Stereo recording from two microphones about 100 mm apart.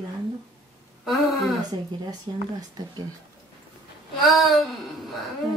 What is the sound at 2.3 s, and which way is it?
Speech, 50° right (ahead or behind).